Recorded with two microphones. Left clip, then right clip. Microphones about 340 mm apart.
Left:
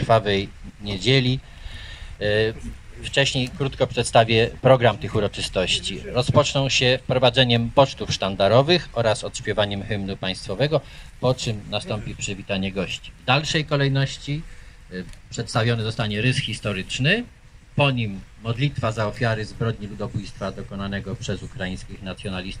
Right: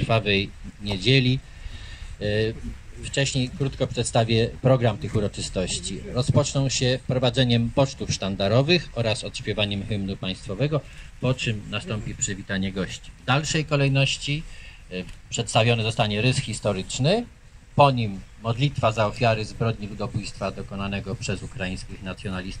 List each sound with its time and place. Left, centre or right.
0.0 s a man's voice: centre